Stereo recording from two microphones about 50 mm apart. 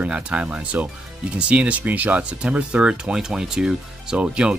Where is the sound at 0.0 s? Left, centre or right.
Right.